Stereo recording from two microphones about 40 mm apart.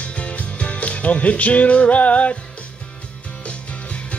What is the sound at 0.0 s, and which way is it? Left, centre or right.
Music, left.